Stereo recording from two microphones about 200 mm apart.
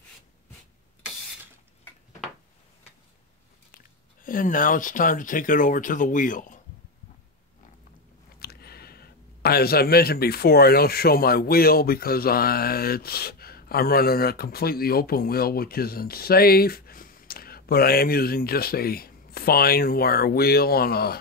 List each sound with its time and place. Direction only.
4.2 s speech: 45° left (ahead or behind)
8.4 s speech: 50° left (ahead or behind)